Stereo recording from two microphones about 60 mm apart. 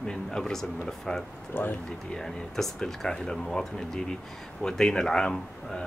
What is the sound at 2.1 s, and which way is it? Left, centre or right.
Speech, centre.